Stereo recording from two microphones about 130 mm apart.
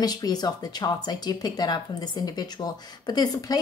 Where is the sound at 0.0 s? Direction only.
30° left (ahead or behind).